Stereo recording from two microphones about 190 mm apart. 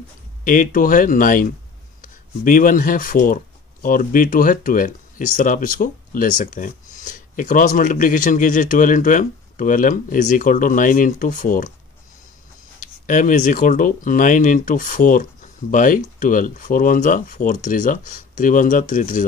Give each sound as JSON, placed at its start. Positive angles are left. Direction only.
{"t": 0.4, "sound": "speech", "side_deg": 45}
{"t": 13.0, "sound": "speech", "side_deg": 40}